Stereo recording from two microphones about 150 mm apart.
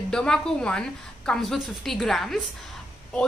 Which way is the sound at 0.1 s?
5° left (ahead or behind).